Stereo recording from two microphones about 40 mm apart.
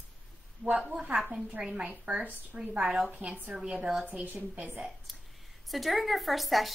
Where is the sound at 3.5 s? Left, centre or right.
Right.